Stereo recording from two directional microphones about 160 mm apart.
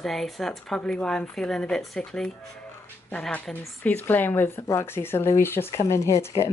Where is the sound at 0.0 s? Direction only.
Centre (ahead or behind).